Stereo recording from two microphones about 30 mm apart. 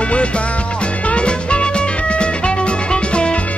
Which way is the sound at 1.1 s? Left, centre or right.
Left.